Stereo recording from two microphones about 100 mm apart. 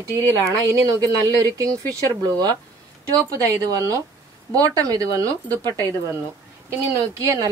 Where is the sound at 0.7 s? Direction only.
35° right (ahead or behind).